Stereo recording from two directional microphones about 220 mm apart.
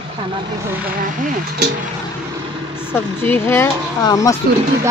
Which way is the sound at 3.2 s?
10° left (ahead or behind).